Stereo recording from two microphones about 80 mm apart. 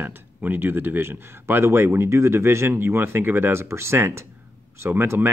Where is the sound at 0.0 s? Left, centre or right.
Right.